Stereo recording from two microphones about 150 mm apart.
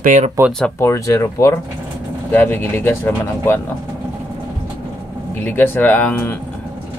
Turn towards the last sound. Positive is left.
turn(degrees=10)  # may be behind; listen again after turning